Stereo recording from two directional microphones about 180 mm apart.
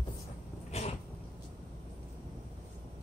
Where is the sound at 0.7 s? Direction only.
35° left (ahead or behind).